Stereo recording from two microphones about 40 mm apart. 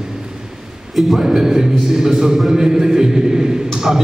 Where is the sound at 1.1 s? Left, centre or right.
Centre.